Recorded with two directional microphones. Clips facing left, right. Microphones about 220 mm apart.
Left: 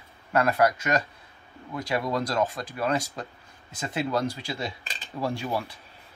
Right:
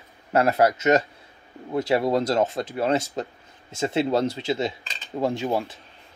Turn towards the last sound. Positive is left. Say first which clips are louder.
# right 5 dB
turn(degrees=-20)  # may be behind; listen again after turning